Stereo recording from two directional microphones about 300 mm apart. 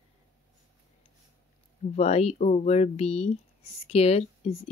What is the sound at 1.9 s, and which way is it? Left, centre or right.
Speech, left.